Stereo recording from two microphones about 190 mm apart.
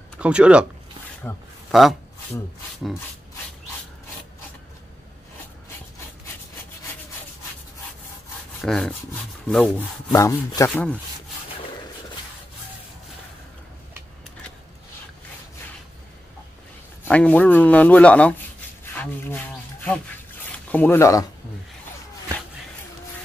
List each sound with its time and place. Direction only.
0.2 s speech: 5° right (ahead or behind)
1.3 s speech: 10° left (ahead or behind)
1.7 s speech: centre (ahead or behind)
8.5 s rub: centre (ahead or behind)
10.1 s speech: 15° left (ahead or behind)
17.1 s speech: 5° left (ahead or behind)